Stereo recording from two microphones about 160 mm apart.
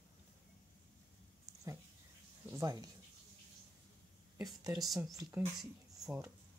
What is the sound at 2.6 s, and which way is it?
Speech, 25° right (ahead or behind).